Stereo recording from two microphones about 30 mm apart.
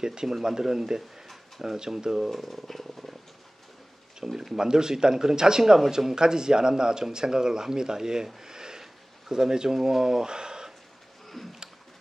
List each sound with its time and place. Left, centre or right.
0.0 s speech: right
2.3 s purr: centre
4.2 s speech: centre
8.4 s a sound: right
9.3 s speech: right
11.4 s a sound: centre